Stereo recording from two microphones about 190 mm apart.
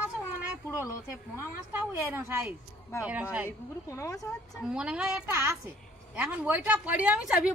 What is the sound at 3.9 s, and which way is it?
Speech, 15° left (ahead or behind).